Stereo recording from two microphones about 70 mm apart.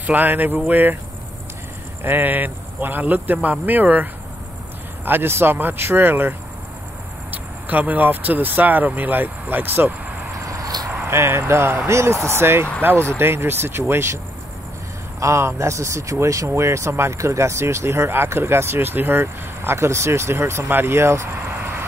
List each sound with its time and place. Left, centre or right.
0.0 s speech: right
2.0 s speech: right
11.1 s speech: right
12.9 s speech: centre
13.2 s speech: right
21.5 s vehicle: right